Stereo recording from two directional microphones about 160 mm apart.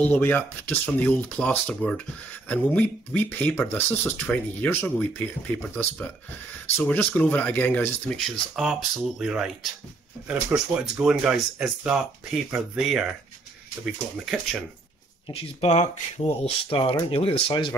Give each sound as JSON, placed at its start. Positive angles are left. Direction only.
{"t": 0.1, "sound": "speech", "side_deg": 10}
{"t": 15.2, "sound": "speech", "side_deg": 35}